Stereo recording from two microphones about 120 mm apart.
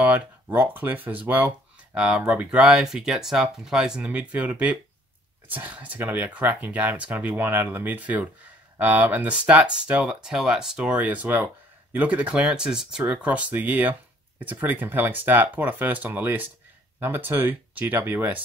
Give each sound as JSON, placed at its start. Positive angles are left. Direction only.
{"t": 0.0, "sound": "speech", "side_deg": -15}